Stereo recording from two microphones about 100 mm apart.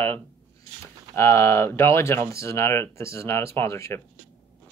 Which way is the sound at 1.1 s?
25° left (ahead or behind).